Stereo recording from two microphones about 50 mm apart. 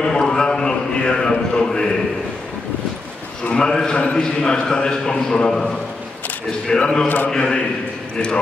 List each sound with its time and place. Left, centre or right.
0.0 s a sound: centre
3.5 s a man's voice: centre
6.7 s a man's voice: left